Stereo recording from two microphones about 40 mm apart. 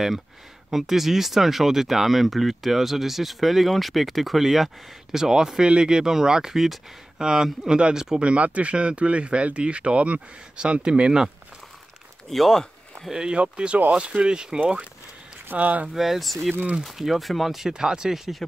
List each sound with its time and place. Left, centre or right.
0.7 s speech: centre
8.2 s speech: right
12.3 s speech: centre
13.3 s speech: right
15.4 s speech: right
15.9 s speech: centre
17.6 s speech: centre
18.1 s speech: centre